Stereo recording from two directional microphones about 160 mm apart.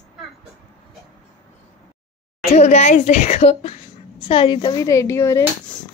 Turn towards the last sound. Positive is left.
turn(degrees=20)  # may be behind; listen again after turning